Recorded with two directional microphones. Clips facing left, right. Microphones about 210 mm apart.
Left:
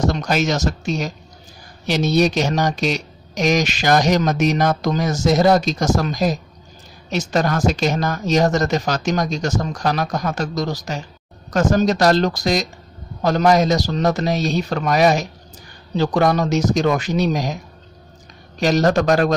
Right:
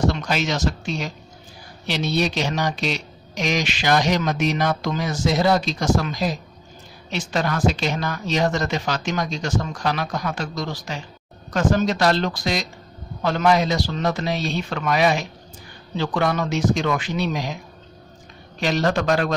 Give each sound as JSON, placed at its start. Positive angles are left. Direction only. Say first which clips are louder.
{"t": 0.0, "sound": "speech", "louder": "left 3 dB", "side_deg": 45}
{"t": 18.6, "sound": "speech", "louder": "left 5 dB", "side_deg": 40}